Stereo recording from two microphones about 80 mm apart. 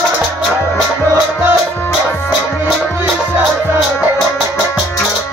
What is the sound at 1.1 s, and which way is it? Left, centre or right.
Music, right.